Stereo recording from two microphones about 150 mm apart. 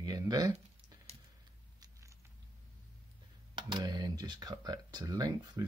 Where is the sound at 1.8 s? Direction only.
20° right (ahead or behind).